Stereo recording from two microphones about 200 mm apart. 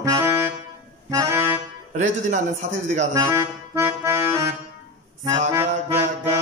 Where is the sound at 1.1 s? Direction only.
15° right (ahead or behind).